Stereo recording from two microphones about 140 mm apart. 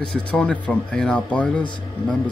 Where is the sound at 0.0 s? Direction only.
5° left (ahead or behind).